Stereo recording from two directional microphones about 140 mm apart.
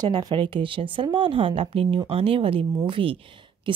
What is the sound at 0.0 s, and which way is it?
Speech, 30° right (ahead or behind).